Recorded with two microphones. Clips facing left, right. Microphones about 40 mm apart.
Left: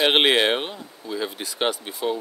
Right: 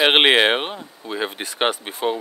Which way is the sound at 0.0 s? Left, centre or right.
Right.